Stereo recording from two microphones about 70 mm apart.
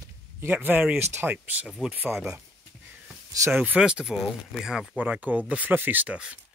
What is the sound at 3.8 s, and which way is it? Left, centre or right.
Speech, centre.